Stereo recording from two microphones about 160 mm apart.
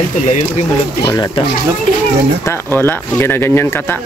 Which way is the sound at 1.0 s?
25° left (ahead or behind).